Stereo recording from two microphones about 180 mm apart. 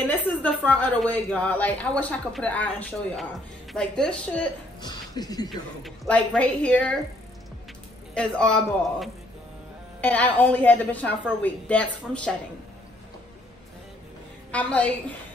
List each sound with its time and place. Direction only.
0.1 s a woman's voice: 10° left (ahead or behind)
4.8 s speech: 20° left (ahead or behind)
5.5 s a woman's voice: 5° left (ahead or behind)
8.1 s a woman's voice: 5° left (ahead or behind)
10.0 s a woman's voice: 10° left (ahead or behind)
14.5 s a woman's voice: 5° left (ahead or behind)